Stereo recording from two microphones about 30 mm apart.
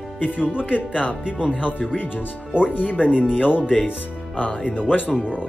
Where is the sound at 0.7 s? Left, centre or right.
Left.